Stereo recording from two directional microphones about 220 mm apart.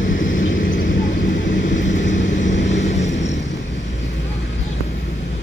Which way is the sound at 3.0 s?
55° left (ahead or behind).